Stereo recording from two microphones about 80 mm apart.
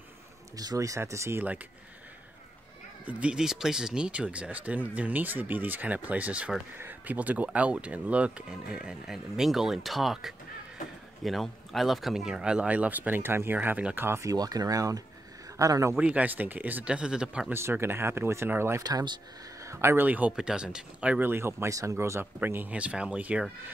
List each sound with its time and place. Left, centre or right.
0.6 s speech: right
3.1 s speech: centre
14.0 s speech: right
14.3 s speech: right
16.0 s speech: centre
17.5 s speech: right
18.8 s speech: right
19.6 s speech: right
20.1 s speech: centre
21.3 s speech: right
22.2 s speech: right